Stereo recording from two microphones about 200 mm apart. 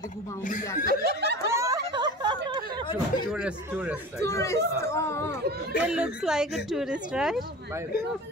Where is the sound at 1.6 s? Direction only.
20° right (ahead or behind).